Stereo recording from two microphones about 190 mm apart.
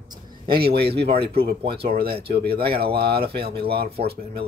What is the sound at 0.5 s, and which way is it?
Speech, 55° right (ahead or behind).